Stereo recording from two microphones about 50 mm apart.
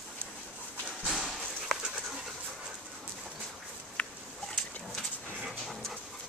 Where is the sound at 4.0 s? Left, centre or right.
Left.